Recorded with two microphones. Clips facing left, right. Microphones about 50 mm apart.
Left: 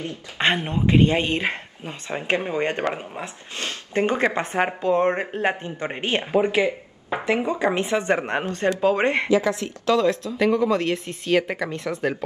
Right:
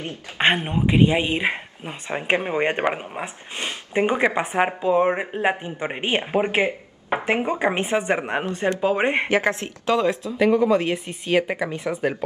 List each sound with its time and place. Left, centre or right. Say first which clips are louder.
0.4 s speech: right 2 dB; right
8.1 s speech: even; centre
9.3 s speech: left 1 dB; right
9.8 s speech: left 1 dB; right